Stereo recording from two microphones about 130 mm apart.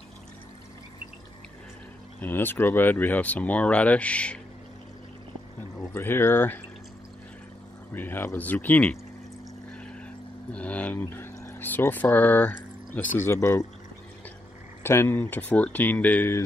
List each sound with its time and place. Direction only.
2.1 s speech: 15° left (ahead or behind)
5.6 s speech: 15° left (ahead or behind)
7.9 s speech: 15° left (ahead or behind)
10.5 s speech: 10° left (ahead or behind)
14.8 s speech: 20° left (ahead or behind)